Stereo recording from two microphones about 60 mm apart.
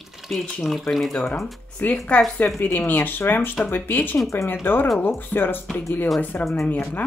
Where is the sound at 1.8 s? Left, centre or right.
Left.